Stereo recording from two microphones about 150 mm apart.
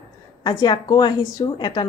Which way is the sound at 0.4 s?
30° left (ahead or behind).